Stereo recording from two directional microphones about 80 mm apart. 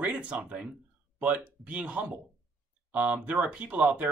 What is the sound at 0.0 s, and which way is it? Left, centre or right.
Speech, centre.